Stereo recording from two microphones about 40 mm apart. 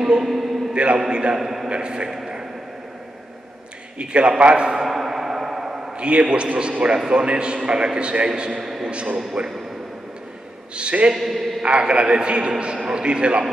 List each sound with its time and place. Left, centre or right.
0.2 s a man's voice: centre
0.7 s a man's voice: right
1.4 s a man's voice: centre
1.7 s a man's voice: right
2.0 s a sound: centre
4.0 s a man's voice: right
4.8 s a sound: centre
5.9 s a man's voice: right
8.5 s a man's voice: centre
8.8 s a man's voice: right
10.8 s a man's voice: right
11.1 s a man's voice: centre
11.8 s a man's voice: right